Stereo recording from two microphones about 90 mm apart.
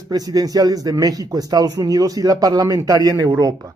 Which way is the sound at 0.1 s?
45° right (ahead or behind).